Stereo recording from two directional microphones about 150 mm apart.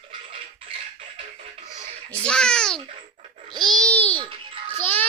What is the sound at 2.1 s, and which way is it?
Babbling, 5° left (ahead or behind).